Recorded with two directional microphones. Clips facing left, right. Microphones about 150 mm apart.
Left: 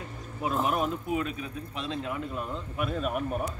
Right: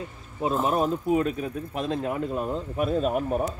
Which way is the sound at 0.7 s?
30° right (ahead or behind).